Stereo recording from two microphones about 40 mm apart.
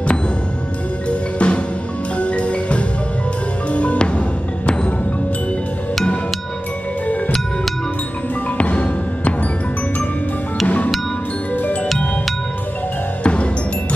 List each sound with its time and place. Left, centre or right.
1.4 s music: left
8.5 s music: left
11.5 s music: left
13.2 s music: left